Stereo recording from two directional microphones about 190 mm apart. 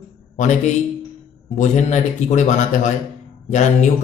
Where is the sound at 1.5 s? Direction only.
40° left (ahead or behind).